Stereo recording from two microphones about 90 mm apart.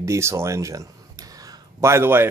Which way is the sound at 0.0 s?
35° right (ahead or behind).